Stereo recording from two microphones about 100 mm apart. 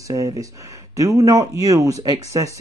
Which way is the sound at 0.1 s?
35° right (ahead or behind).